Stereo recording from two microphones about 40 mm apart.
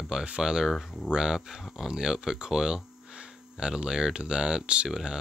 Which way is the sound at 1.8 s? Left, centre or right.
Centre.